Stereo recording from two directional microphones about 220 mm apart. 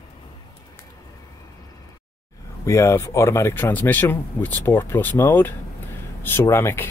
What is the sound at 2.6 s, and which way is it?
Speech, 15° left (ahead or behind).